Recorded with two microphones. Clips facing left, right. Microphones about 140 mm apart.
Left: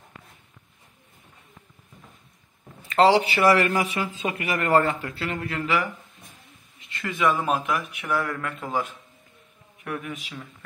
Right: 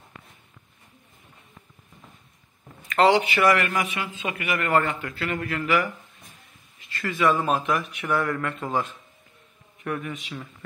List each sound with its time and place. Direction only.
2.9 s a man's voice: 30° left (ahead or behind); by 10.2 s 5° left (ahead or behind)